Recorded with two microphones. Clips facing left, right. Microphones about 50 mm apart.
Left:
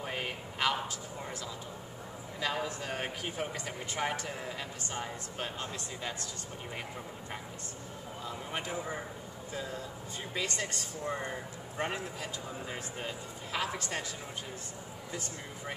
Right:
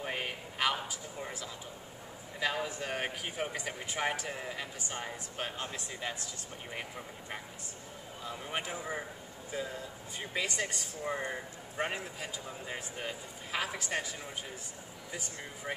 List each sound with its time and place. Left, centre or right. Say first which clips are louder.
0.0 s a sound: even; centre
2.4 s speech: right 1 dB; centre
5.4 s speech: even; centre
8.3 s a sound: right 1 dB; centre
8.6 s speech: left 1 dB; centre
10.3 s speech: right 1 dB; centre